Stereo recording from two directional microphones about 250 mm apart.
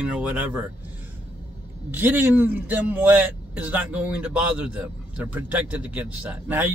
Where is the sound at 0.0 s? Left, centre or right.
Centre.